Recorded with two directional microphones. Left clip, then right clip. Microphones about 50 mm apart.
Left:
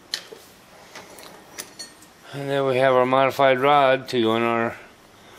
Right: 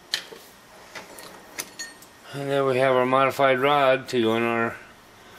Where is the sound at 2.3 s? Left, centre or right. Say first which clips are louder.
Left 1 dB; left.